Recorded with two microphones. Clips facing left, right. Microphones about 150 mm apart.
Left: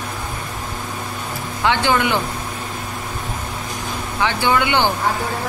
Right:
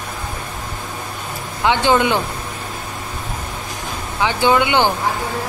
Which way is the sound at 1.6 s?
20° right (ahead or behind).